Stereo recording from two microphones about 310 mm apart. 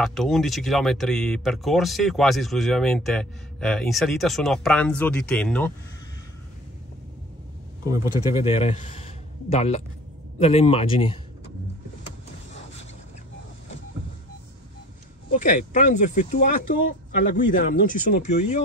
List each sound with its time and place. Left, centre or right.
0.0 s speech: centre
7.8 s speech: centre
8.5 s a man's voice: left
15.2 s speech: left
17.6 s speech: left